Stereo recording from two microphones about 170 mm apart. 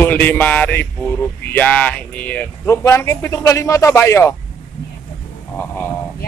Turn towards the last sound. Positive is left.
turn(degrees=10)  # may be behind; listen again after turning